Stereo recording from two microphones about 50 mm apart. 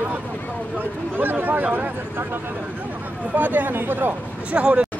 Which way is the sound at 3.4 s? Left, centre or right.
Right.